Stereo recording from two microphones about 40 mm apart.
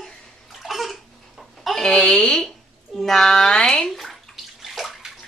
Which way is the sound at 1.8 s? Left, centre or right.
Centre.